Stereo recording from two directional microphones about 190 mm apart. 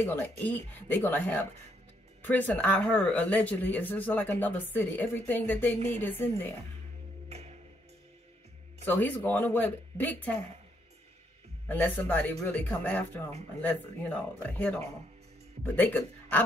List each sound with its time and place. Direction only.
0.0 s speech: 10° left (ahead or behind)
7.2 s music: 35° right (ahead or behind)
8.8 s speech: 10° left (ahead or behind)
11.6 s speech: 10° left (ahead or behind)